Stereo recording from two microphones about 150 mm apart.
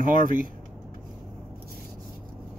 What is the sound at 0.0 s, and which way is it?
Speech, 65° right (ahead or behind).